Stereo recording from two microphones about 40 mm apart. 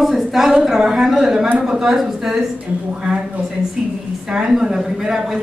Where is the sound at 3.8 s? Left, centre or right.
Centre.